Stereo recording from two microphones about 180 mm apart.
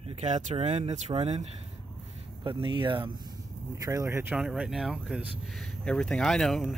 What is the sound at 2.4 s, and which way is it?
Speech, 30° right (ahead or behind).